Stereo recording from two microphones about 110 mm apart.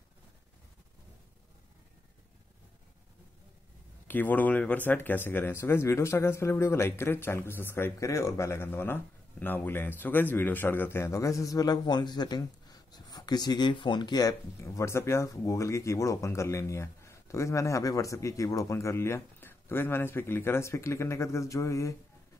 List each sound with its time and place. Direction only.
4.1 s speech: 15° left (ahead or behind)